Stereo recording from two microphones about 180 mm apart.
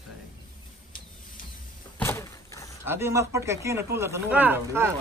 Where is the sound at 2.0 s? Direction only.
15° left (ahead or behind).